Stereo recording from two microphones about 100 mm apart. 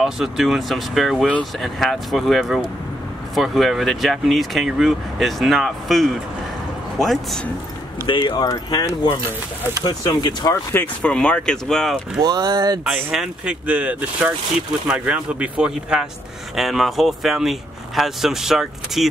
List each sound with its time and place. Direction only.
0.0 s speech: 5° right (ahead or behind)
8.1 s speech: 50° left (ahead or behind)
11.0 s speech: 10° left (ahead or behind)
12.2 s speech: 45° right (ahead or behind)
13.1 s speech: 10° right (ahead or behind)